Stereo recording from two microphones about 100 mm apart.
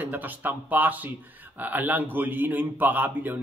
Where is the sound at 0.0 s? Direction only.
20° right (ahead or behind).